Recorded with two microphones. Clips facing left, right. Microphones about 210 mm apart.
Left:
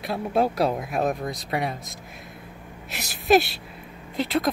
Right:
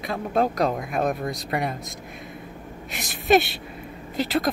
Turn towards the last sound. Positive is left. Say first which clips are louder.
# right 1 dB
turn(degrees=0)  # may be behind; listen again after turning